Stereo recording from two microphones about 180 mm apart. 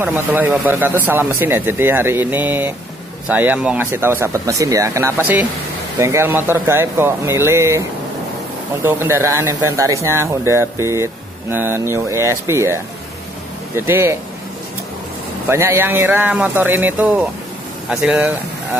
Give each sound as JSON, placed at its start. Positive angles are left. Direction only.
{"t": 0.0, "sound": "speech", "side_deg": -10}
{"t": 8.8, "sound": "speech", "side_deg": -15}
{"t": 13.7, "sound": "speech", "side_deg": -15}
{"t": 15.4, "sound": "speech", "side_deg": -15}